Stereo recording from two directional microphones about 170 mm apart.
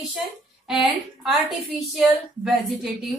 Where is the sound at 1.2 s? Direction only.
Centre (ahead or behind).